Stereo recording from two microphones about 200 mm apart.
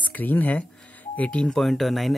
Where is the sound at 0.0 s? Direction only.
10° left (ahead or behind).